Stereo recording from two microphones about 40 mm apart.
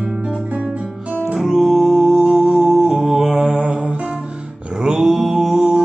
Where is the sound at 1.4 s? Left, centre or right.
Centre.